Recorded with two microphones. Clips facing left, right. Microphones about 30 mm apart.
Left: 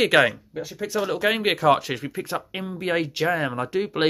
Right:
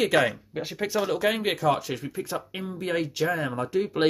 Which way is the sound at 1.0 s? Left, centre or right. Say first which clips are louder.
Left 4 dB; centre.